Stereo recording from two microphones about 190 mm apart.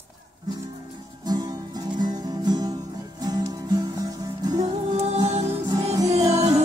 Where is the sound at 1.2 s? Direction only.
20° right (ahead or behind).